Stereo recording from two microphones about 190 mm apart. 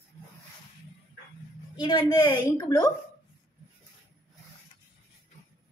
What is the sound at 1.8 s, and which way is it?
A woman's voice, 20° left (ahead or behind).